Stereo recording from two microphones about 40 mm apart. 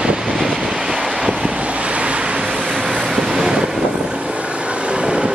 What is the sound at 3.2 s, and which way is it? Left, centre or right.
Wind noise, centre.